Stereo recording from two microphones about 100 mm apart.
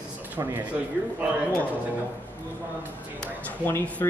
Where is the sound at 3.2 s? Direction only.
20° left (ahead or behind).